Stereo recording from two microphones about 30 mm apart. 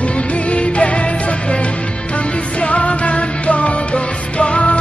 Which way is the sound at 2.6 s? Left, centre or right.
Left.